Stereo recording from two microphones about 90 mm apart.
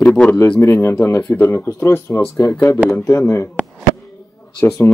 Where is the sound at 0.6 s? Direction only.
30° left (ahead or behind).